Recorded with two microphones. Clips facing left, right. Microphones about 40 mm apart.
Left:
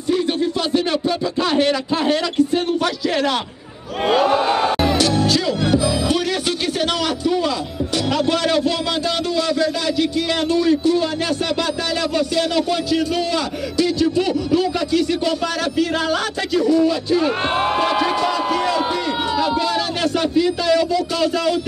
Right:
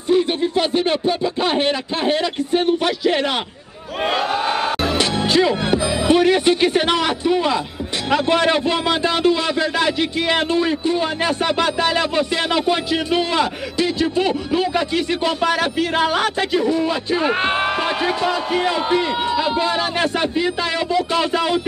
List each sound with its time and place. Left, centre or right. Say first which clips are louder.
0.1 s a man's voice: right 2 dB; right
4.0 s crowd: left 4 dB; centre
4.8 s music: left 2 dB; right
8.1 s a man's voice: right 3 dB; right
12.2 s a man's voice: even; right